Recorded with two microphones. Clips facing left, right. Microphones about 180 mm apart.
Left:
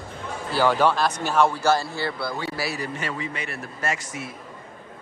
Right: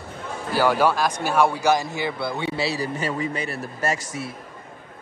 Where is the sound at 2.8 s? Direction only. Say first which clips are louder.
Right 4 dB; 35° right (ahead or behind).